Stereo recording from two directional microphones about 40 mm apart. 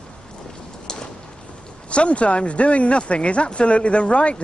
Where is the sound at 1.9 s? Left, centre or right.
Left.